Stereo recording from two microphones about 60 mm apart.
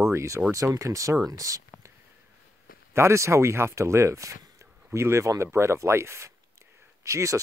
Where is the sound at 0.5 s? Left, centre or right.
Right.